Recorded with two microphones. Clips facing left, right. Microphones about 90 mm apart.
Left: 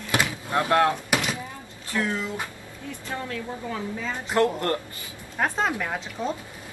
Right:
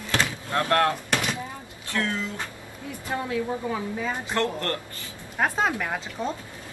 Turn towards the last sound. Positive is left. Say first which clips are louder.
# even
turn(degrees=-5)  # may be behind; listen again after turning